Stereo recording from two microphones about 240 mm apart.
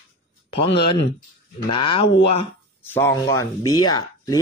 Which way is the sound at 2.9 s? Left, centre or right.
Centre.